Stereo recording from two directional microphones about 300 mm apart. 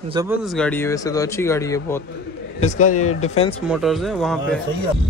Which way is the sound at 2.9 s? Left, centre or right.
Left.